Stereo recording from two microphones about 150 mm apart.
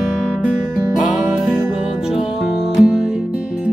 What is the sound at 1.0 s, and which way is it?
Music, 5° right (ahead or behind).